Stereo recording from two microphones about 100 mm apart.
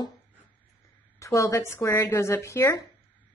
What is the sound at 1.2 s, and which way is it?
A woman's voice, 30° left (ahead or behind).